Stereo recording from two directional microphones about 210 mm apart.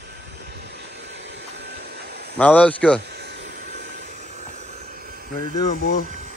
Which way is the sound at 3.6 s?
40° right (ahead or behind).